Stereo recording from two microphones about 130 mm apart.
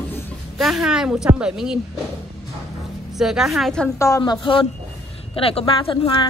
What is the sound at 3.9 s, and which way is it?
Speech, 25° left (ahead or behind).